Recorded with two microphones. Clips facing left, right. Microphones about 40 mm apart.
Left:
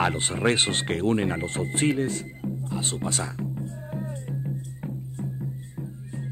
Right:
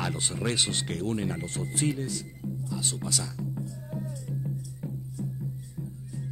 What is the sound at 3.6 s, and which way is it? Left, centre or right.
Music, left.